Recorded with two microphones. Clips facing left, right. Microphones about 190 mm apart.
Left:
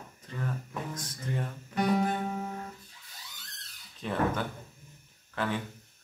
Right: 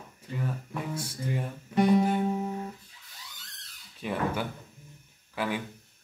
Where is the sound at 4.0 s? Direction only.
10° right (ahead or behind).